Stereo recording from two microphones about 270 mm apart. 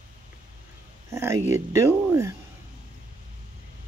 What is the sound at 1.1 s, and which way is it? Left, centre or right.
Speech, centre.